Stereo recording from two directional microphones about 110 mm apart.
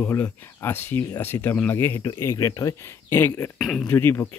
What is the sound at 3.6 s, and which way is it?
Speech, centre (ahead or behind).